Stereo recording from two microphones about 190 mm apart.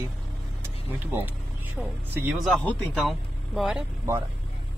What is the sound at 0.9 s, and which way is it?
Speech, 10° right (ahead or behind).